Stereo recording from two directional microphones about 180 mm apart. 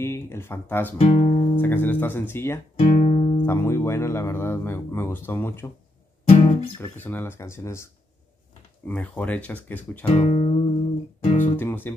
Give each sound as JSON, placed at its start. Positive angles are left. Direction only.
{"t": 0.0, "sound": "speech", "side_deg": 15}
{"t": 0.9, "sound": "speech", "side_deg": 35}
{"t": 1.6, "sound": "speech", "side_deg": 10}
{"t": 2.8, "sound": "guitar", "side_deg": 30}
{"t": 3.4, "sound": "speech", "side_deg": 15}
{"t": 6.2, "sound": "music", "side_deg": 30}
{"t": 6.8, "sound": "speech", "side_deg": 10}
{"t": 10.0, "sound": "speech", "side_deg": 40}
{"t": 11.2, "sound": "music", "side_deg": 45}
{"t": 11.5, "sound": "music", "side_deg": 10}